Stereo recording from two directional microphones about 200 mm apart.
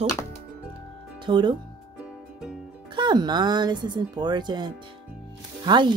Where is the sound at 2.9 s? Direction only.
20° right (ahead or behind).